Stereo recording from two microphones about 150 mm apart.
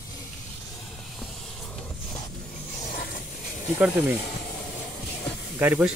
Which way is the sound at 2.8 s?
80° left.